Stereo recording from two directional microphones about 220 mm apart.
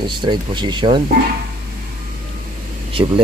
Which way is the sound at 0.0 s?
20° right (ahead or behind).